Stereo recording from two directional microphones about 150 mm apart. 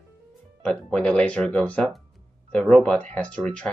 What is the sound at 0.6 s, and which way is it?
Speech, 5° left (ahead or behind).